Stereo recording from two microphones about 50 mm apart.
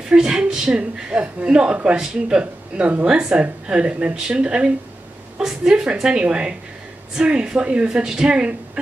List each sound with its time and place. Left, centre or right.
0.1 s a woman's voice: centre
2.8 s speech: right
3.1 s a woman's voice: right